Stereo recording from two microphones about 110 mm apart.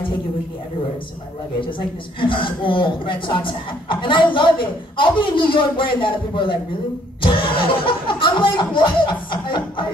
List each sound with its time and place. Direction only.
2.1 s speech: 50° left (ahead or behind)